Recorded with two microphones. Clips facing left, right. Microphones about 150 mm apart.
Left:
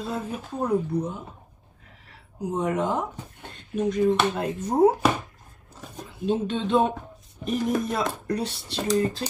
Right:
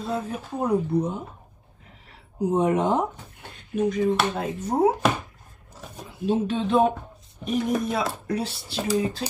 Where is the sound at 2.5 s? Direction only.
25° right (ahead or behind).